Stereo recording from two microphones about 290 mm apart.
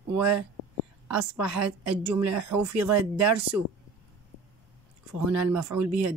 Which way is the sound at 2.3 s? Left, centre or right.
Right.